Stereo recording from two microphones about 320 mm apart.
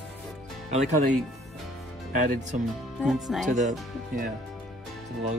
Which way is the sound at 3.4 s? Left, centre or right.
Right.